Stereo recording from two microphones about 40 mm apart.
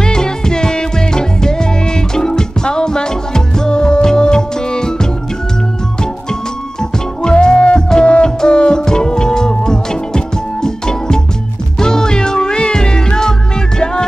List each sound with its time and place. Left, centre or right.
0.0 s music: centre
6.8 s music: centre